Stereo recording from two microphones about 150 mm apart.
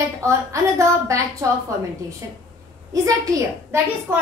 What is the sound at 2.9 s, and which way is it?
Speech, 25° right (ahead or behind).